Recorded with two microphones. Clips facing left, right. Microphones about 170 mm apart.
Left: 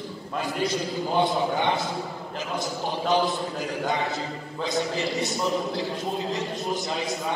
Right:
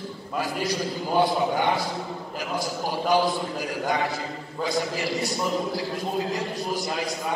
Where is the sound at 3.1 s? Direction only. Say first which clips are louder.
Right 1 dB; 20° left (ahead or behind).